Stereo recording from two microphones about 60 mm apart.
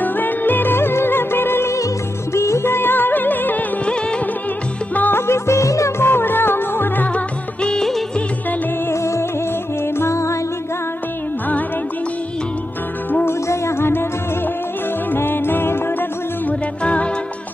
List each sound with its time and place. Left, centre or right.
0.0 s music: left
2.3 s music: left
4.9 s music: left
5.2 s music: left
5.9 s music: left
7.2 s music: centre
8.9 s music: left
13.1 s music: left
15.1 s music: left
16.4 s music: left